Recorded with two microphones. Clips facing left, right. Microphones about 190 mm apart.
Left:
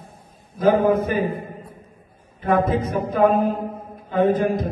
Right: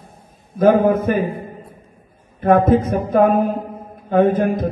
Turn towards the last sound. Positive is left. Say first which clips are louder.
# right 2 dB
turn(degrees=-55)  # may be behind; listen again after turning